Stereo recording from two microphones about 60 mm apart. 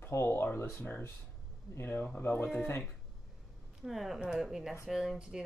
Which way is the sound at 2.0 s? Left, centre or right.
Left.